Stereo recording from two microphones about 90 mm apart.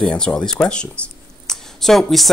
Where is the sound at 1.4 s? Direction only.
5° left (ahead or behind).